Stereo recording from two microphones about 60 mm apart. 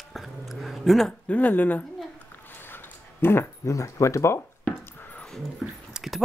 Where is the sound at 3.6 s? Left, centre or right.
Left.